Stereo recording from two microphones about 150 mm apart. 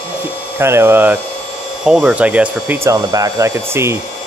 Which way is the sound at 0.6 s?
15° right (ahead or behind).